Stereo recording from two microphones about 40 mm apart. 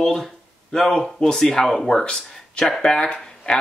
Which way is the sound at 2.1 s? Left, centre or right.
Left.